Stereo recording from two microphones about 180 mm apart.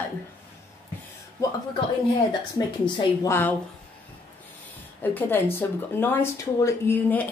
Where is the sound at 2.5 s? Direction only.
20° left (ahead or behind).